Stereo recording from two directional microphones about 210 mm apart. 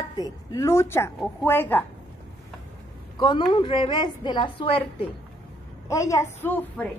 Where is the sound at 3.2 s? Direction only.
20° left (ahead or behind).